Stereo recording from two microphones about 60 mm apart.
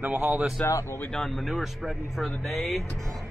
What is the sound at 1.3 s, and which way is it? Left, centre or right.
Speech, centre.